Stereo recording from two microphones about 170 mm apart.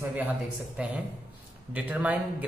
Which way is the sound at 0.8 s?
5° right (ahead or behind).